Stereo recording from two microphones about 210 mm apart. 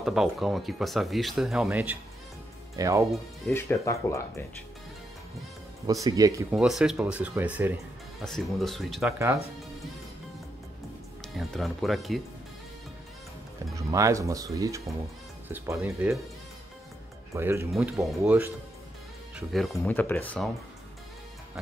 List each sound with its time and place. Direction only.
0.0 s speech: centre (ahead or behind)
3.4 s speech: 10° left (ahead or behind)
5.9 s speech: 15° right (ahead or behind)
6.5 s speech: 5° right (ahead or behind)
11.3 s speech: centre (ahead or behind)
13.7 s speech: 15° right (ahead or behind)
17.3 s speech: 10° right (ahead or behind); by 20.5 s 5° left (ahead or behind)